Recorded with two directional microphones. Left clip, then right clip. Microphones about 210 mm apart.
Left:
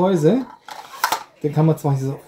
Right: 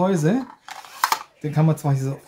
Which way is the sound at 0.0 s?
30° right (ahead or behind).